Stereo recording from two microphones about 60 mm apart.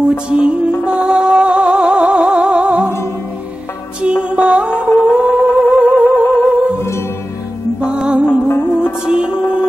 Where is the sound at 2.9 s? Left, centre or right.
Left.